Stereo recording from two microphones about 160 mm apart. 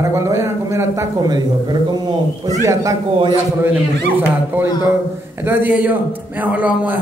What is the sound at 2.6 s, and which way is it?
Mantra, 20° right (ahead or behind).